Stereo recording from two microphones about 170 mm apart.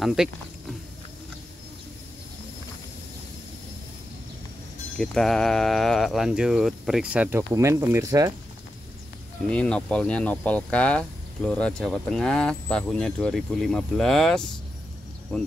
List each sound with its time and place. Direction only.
0.0 s speech: centre (ahead or behind)
4.9 s speech: 5° left (ahead or behind); by 8.3 s 20° right (ahead or behind)
9.5 s speech: 5° left (ahead or behind)